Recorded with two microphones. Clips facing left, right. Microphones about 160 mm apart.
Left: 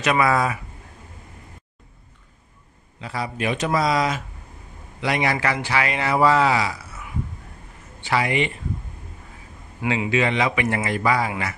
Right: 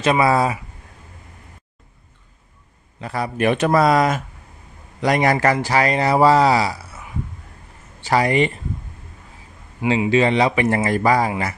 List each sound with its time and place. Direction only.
0.0 s speech: 30° right (ahead or behind)
3.0 s speech: 50° right (ahead or behind)
9.8 s speech: 30° right (ahead or behind)